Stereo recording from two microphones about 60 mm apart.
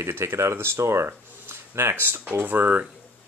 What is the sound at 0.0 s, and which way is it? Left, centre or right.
Speech, right.